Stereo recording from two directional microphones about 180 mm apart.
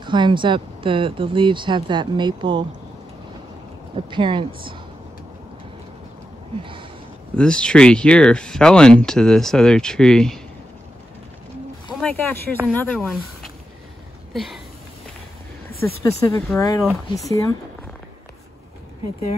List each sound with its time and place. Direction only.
0.0 s speech: 25° right (ahead or behind)
4.1 s speech: 25° right (ahead or behind)
6.6 s a sound: 30° right (ahead or behind)
7.3 s speech: 5° left (ahead or behind)
12.0 s speech: 5° left (ahead or behind)
14.3 s a sound: centre (ahead or behind)
16.0 s speech: 15° left (ahead or behind)